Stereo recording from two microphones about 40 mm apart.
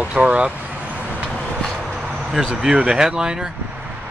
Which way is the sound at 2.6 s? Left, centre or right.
Centre.